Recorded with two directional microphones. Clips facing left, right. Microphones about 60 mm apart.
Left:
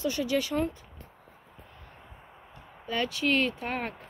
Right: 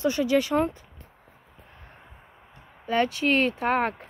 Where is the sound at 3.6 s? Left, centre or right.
Right.